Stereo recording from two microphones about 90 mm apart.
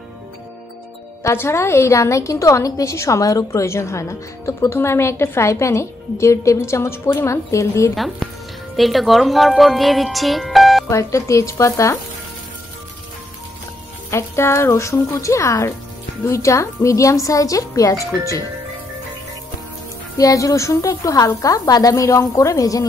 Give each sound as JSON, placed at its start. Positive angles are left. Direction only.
{"t": 1.2, "sound": "a woman's voice", "side_deg": 30}
{"t": 7.9, "sound": "speech", "side_deg": 0}
{"t": 10.9, "sound": "a woman's voice", "side_deg": 35}
{"t": 14.1, "sound": "a woman's voice", "side_deg": 30}
{"t": 20.2, "sound": "a woman's voice", "side_deg": 40}